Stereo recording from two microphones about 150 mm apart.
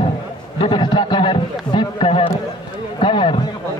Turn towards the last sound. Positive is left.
turn(degrees=35)  # may be behind; listen again after turning